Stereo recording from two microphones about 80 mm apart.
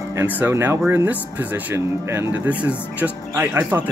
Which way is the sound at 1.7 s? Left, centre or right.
Right.